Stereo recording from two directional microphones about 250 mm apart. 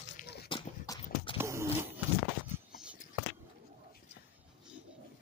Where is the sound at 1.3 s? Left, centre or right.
Centre.